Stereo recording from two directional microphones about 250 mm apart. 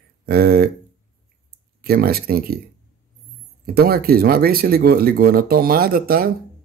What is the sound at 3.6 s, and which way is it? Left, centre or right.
Speech, right.